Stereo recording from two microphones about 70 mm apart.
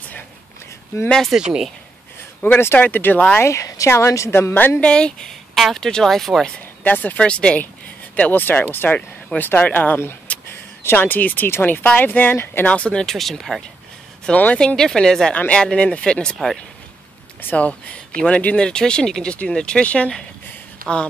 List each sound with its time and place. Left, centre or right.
1.3 s speech: centre
2.4 s speech: left
3.3 s a woman's voice: left
4.8 s speech: centre
5.5 s speech: centre
6.8 s speech: left
8.2 s speech: left
10.3 s a sound: left
10.8 s speech: left
12.7 s speech: centre
14.2 s speech: centre
14.8 s speech: centre
17.4 s speech: left